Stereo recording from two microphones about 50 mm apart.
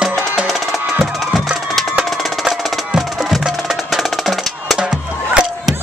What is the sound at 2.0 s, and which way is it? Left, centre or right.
Percussion, centre.